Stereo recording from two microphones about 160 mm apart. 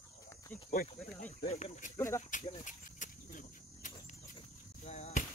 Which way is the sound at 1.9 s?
15° left (ahead or behind).